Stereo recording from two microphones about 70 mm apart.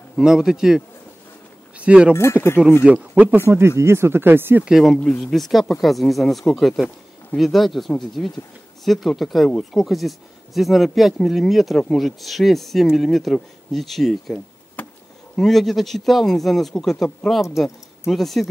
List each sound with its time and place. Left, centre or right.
0.2 s a man's voice: centre
1.8 s speech: centre
2.1 s speech: left
2.8 s a man's voice: centre
3.3 s speech: right
4.6 s speech: centre
14.8 s a sound: left
15.3 s speech: centre